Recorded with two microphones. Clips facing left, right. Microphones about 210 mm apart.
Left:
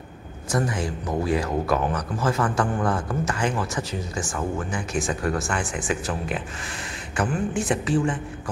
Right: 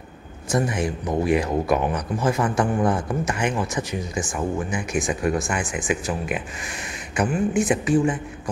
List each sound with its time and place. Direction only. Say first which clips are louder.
0.5 s speech: right 2 dB; 20° right (ahead or behind)